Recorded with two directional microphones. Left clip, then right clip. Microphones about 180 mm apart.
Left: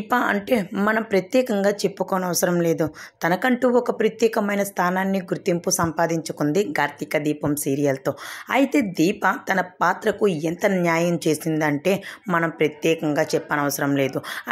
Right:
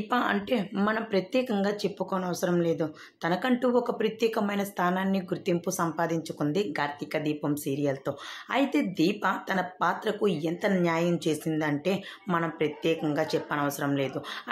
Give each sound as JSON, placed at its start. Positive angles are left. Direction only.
{"t": 0.1, "sound": "a woman's voice", "side_deg": 30}